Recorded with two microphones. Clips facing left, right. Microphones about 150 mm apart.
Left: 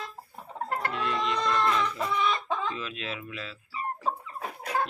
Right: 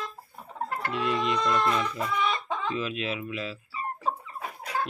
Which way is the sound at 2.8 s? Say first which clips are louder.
Right 5 dB; 10° right (ahead or behind).